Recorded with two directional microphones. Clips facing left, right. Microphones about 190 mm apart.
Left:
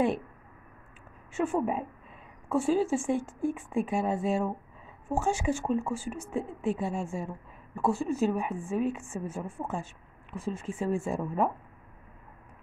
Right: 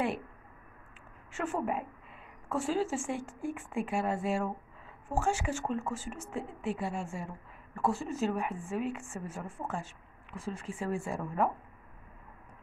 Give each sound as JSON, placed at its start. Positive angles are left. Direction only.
{"t": 1.3, "sound": "a woman's voice", "side_deg": 15}